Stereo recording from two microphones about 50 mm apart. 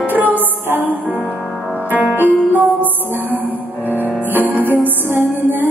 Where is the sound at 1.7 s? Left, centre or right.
Right.